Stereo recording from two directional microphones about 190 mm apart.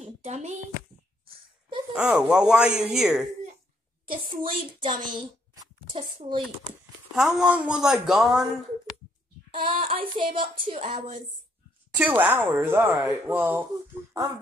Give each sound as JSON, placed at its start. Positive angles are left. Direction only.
{"t": 0.2, "sound": "a child's voice", "side_deg": -35}
{"t": 2.0, "sound": "speech", "side_deg": -5}
{"t": 4.1, "sound": "a child's voice", "side_deg": -25}
{"t": 7.2, "sound": "speech", "side_deg": 0}
{"t": 9.6, "sound": "child singing", "side_deg": -30}
{"t": 11.9, "sound": "speech", "side_deg": -10}